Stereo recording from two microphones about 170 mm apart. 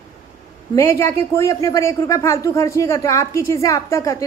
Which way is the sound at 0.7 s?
15° left (ahead or behind).